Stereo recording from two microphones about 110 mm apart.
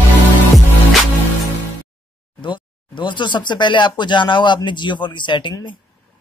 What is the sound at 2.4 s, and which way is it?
Speech, 45° left (ahead or behind).